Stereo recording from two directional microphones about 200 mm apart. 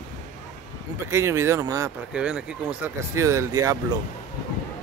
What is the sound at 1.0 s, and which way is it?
Speech, 15° right (ahead or behind).